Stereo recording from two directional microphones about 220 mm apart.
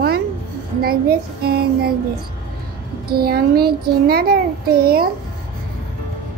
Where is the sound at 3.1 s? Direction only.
45° right (ahead or behind).